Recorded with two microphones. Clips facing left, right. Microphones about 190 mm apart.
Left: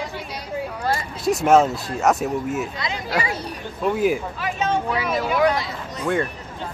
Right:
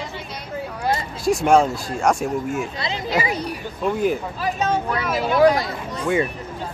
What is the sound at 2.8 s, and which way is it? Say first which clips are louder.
Speech: right 2 dB; 25° right (ahead or behind).